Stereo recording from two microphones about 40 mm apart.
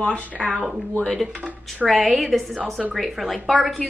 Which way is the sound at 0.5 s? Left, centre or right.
Right.